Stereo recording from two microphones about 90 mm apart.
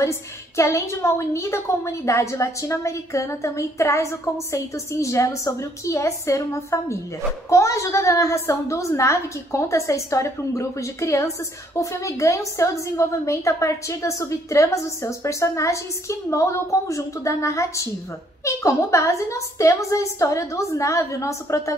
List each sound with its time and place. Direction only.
0.0 s a woman's voice: 30° left (ahead or behind)